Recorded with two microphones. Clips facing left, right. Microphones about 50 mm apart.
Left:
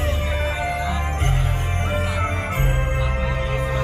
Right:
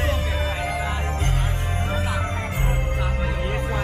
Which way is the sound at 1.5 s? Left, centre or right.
Left.